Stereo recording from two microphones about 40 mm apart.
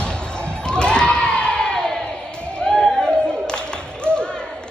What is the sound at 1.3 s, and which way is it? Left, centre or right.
Crowd, left.